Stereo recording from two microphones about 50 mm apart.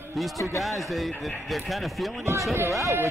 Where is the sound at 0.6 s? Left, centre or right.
Centre.